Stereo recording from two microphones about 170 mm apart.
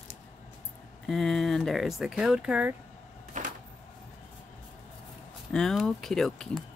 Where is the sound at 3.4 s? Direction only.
50° right (ahead or behind).